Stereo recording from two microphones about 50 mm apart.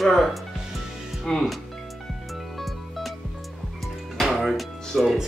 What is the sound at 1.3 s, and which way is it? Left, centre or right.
Speech, centre.